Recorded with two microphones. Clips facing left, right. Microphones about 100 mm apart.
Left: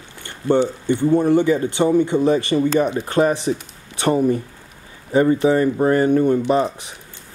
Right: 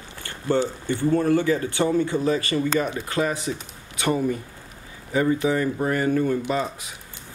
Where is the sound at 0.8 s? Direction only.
20° left (ahead or behind).